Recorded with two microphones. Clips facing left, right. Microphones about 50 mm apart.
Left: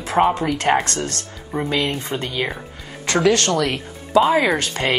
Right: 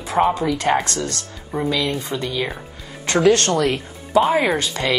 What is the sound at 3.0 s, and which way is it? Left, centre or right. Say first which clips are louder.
Music: right 1 dB; left.